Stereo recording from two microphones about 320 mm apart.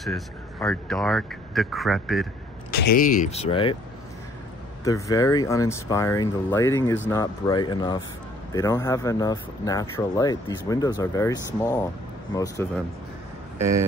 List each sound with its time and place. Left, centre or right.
0.0 s speech: centre
2.7 s speech: left
4.8 s speech: centre
13.6 s speech: centre